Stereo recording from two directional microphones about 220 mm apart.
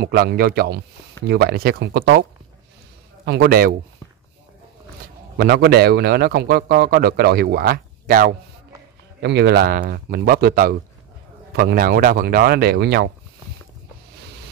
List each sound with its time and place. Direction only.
0.0 s a man's voice: 45° right (ahead or behind)
3.3 s a man's voice: 50° right (ahead or behind)
5.4 s a man's voice: 45° right (ahead or behind)